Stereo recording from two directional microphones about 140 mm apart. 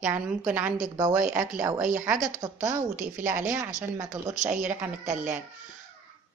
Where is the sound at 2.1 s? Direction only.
65° right (ahead or behind).